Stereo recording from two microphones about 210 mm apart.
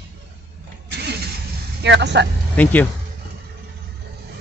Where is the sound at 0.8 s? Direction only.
50° right (ahead or behind).